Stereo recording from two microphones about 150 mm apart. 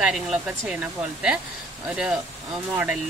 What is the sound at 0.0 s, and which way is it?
Speech, 5° right (ahead or behind).